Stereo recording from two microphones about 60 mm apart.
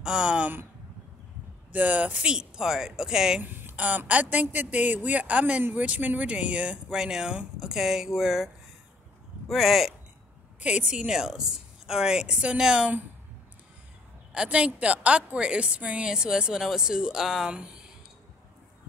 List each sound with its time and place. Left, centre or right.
0.0 s a woman's voice: centre
1.7 s a woman's voice: right
2.3 s a woman's voice: centre
3.4 s a sound: right
3.7 s a woman's voice: right; by 8.5 s centre
9.5 s speech: centre
10.6 s a woman's voice: right
14.3 s a woman's voice: centre